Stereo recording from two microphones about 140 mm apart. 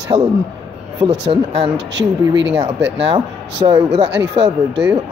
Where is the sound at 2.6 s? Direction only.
40° right (ahead or behind).